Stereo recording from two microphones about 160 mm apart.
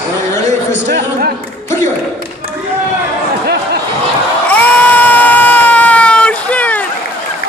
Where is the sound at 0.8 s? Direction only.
90° right.